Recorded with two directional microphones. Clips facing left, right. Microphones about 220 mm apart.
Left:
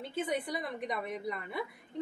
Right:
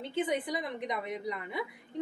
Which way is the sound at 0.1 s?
90° right.